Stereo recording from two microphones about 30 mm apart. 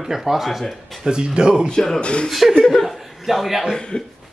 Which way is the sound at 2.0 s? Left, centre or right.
Left.